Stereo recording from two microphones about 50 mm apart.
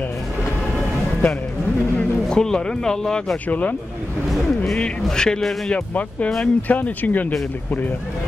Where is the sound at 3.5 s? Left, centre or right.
Left.